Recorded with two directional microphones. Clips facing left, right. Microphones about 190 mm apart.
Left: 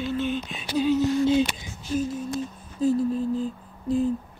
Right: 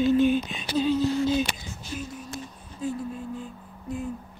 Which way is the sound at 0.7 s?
15° left (ahead or behind).